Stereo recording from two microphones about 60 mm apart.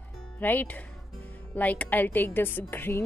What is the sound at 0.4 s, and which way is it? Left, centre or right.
A woman's voice, left.